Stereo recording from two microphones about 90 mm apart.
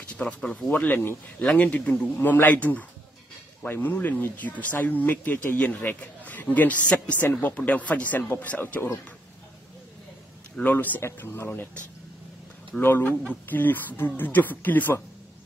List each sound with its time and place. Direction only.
0.1 s speech: 15° left (ahead or behind)
0.7 s speech: 20° left (ahead or behind)
10.5 s speech: 15° left (ahead or behind)
12.8 s speech: 25° left (ahead or behind)